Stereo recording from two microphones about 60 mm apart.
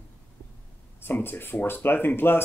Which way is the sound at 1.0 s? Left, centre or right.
Left.